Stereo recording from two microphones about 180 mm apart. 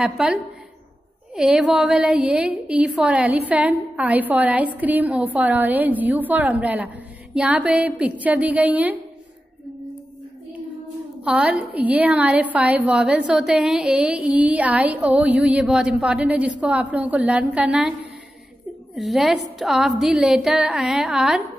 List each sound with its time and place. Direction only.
0.0 s a woman's voice: 5° right (ahead or behind)
11.2 s a woman's voice: 5° right (ahead or behind)
18.9 s a woman's voice: centre (ahead or behind)